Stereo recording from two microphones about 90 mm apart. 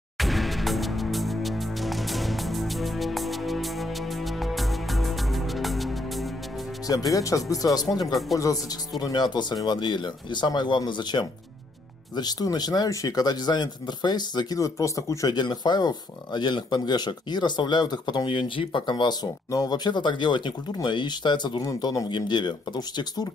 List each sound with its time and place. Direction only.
0.2 s music: centre (ahead or behind)
6.9 s speech: 40° left (ahead or behind)
15.3 s speech: 55° left (ahead or behind)
21.6 s speech: 40° left (ahead or behind)
22.1 s speech: 55° left (ahead or behind)